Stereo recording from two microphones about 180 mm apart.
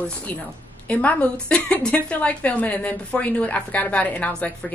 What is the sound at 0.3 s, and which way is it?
Speech, 10° left (ahead or behind).